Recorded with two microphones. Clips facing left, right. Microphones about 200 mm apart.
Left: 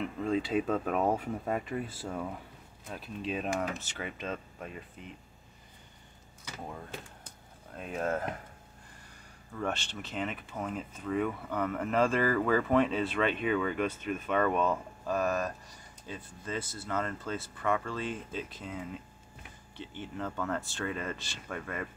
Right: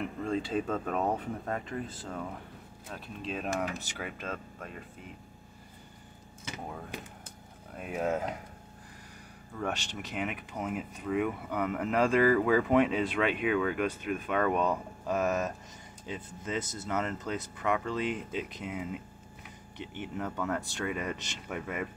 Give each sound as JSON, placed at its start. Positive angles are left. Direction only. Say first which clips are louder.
{"t": 0.2, "sound": "speech", "louder": "left 2 dB", "side_deg": 5}
{"t": 6.4, "sound": "speech", "louder": "right 2 dB", "side_deg": -20}
{"t": 7.7, "sound": "speech", "louder": "right 1 dB", "side_deg": -10}
{"t": 9.6, "sound": "speech", "louder": "even", "side_deg": -10}